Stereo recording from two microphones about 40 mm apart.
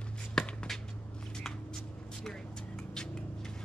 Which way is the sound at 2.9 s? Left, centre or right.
Centre.